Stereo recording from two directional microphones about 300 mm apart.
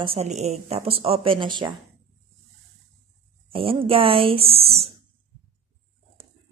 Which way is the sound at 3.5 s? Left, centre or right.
Centre.